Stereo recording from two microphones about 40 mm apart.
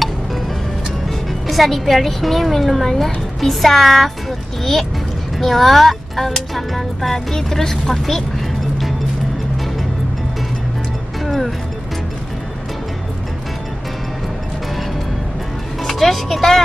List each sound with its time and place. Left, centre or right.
1.5 s speech: centre
5.4 s speech: centre
11.2 s speech: centre
15.8 s speech: centre